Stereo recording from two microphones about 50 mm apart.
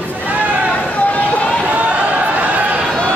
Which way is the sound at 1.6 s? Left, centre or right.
Right.